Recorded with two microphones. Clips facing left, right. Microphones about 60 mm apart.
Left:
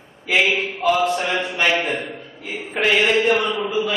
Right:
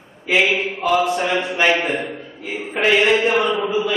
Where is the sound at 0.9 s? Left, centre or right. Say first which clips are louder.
Right 1 dB; centre.